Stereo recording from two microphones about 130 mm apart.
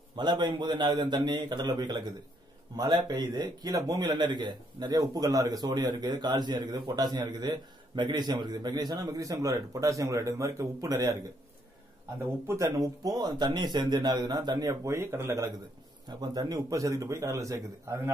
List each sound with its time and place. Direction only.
0.1 s a man's voice: 35° right (ahead or behind)
12.4 s speech: 25° right (ahead or behind)
14.9 s a man's voice: 20° right (ahead or behind)